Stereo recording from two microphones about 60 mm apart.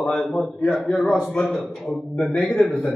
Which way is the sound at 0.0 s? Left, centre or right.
Centre.